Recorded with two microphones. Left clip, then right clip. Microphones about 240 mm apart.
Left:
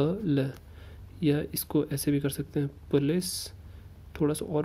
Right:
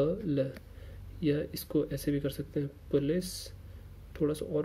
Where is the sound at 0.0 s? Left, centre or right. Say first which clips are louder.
Left 2 dB; left.